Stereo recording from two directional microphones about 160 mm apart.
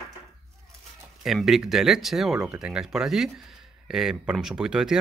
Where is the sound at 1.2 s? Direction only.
Centre (ahead or behind).